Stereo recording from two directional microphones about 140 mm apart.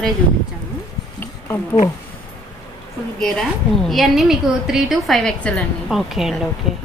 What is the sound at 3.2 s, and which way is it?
A woman's voice, 5° left (ahead or behind).